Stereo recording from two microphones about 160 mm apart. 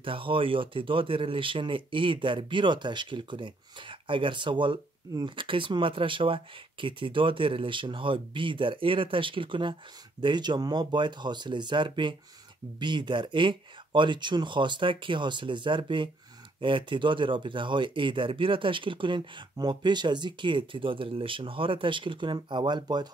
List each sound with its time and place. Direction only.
0.0 s speech: 35° right (ahead or behind)